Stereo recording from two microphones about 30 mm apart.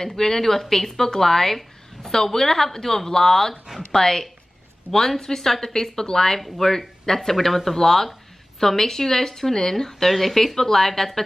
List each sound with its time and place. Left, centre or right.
0.0 s speech: centre
10.0 s speech: centre